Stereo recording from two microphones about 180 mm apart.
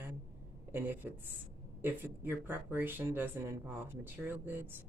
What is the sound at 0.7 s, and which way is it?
A woman's voice, 10° right (ahead or behind).